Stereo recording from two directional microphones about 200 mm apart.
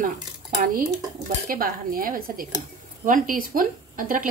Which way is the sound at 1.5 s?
45° right (ahead or behind).